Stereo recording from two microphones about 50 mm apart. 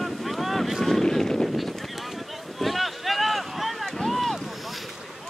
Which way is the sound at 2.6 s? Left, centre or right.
Centre.